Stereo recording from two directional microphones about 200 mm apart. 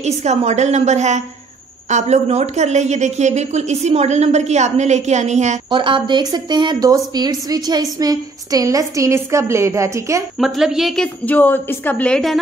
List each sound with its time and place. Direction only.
0.0 s a woman's voice: 35° right (ahead or behind)
5.7 s a woman's voice: 25° right (ahead or behind)
10.4 s a woman's voice: centre (ahead or behind)